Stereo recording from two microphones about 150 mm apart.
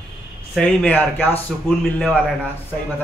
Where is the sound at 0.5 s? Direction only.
10° left (ahead or behind).